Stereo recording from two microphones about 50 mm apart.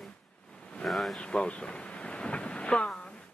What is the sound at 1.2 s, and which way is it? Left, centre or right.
Thunder, left.